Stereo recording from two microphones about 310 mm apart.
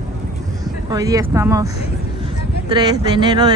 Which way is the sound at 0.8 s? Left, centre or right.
Centre.